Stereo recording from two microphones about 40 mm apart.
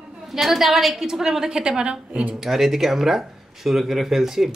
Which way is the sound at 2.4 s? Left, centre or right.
Centre.